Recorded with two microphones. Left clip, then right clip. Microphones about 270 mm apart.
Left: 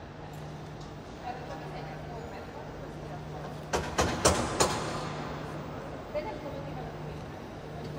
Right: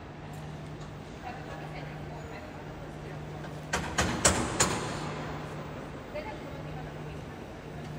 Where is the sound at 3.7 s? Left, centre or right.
Left.